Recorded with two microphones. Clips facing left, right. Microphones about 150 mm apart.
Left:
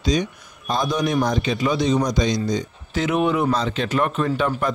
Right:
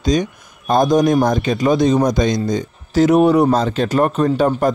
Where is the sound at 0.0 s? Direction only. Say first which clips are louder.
Right 4 dB; 45° right (ahead or behind).